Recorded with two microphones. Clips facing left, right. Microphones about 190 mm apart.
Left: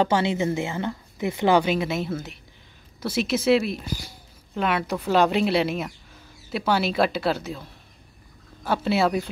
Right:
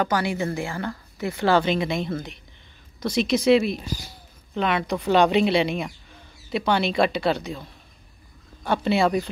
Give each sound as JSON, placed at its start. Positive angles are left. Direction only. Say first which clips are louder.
{"t": 0.0, "sound": "a woman's voice", "louder": "left 2 dB", "side_deg": 25}
{"t": 8.6, "sound": "speech", "louder": "right 1 dB", "side_deg": 5}